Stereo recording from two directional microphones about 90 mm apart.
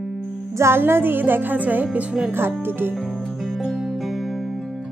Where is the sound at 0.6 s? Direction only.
25° right (ahead or behind).